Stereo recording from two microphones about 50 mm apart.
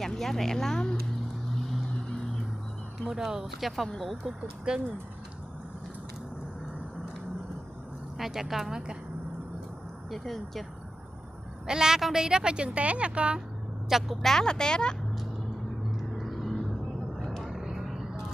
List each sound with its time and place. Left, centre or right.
0.0 s speech: centre
3.0 s speech: centre
3.7 s speech: centre
4.7 s speech: centre
8.2 s speech: centre
10.1 s speech: centre
11.6 s speech: centre
13.8 s speech: centre
14.2 s speech: centre
16.0 s vehicle: centre